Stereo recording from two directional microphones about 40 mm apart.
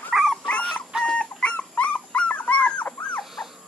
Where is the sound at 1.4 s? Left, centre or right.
Left.